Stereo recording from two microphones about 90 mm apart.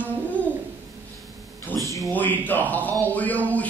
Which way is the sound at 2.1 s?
20° left (ahead or behind).